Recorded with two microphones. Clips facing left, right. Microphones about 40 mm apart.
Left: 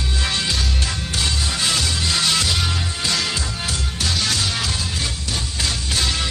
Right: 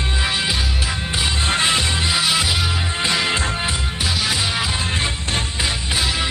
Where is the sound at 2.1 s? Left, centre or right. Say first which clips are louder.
Even; centre.